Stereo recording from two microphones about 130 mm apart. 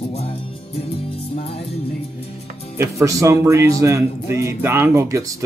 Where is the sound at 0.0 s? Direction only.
55° left (ahead or behind).